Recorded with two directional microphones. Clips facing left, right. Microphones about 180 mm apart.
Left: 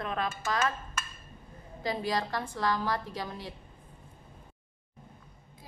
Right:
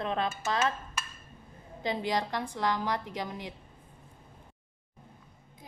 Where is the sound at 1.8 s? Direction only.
20° right (ahead or behind).